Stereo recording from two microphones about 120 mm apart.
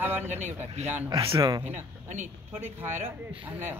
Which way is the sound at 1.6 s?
90° right.